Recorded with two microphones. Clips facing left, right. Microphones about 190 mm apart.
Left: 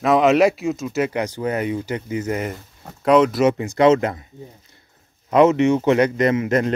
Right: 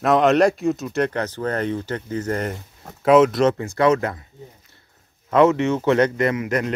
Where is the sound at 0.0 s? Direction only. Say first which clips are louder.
Left 1 dB; centre (ahead or behind).